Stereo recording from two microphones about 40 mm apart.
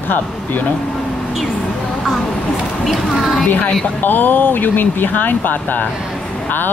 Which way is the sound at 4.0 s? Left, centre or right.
Left.